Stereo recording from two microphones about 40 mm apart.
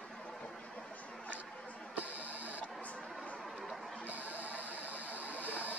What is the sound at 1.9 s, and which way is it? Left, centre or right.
Music, right.